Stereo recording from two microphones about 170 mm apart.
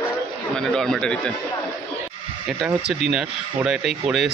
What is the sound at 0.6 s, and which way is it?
Speech, 5° left (ahead or behind).